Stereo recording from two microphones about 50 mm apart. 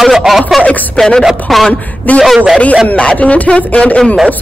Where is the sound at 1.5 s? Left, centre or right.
Centre.